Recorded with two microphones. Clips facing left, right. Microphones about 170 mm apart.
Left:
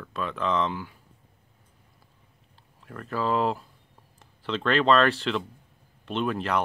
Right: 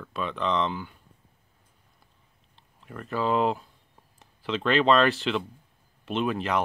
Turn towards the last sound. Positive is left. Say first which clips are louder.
# even
turn(degrees=0)  # may be behind; listen again after turning